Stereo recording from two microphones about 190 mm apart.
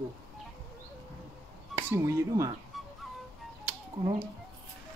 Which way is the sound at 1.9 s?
15° right (ahead or behind).